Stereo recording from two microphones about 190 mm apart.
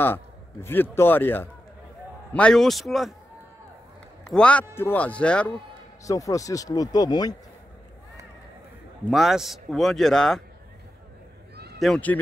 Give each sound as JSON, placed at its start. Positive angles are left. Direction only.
{"t": 0.0, "sound": "speech", "side_deg": 10}
{"t": 4.2, "sound": "a man's voice", "side_deg": 5}
{"t": 6.0, "sound": "speech", "side_deg": 15}
{"t": 9.1, "sound": "speech", "side_deg": 0}
{"t": 11.8, "sound": "speech", "side_deg": 5}